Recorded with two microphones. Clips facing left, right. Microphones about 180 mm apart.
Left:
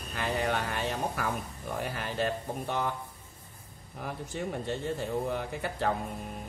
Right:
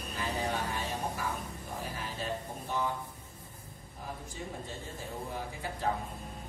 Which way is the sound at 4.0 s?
70° left (ahead or behind).